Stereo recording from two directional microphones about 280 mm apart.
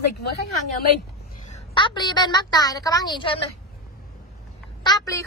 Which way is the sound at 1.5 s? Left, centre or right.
Centre.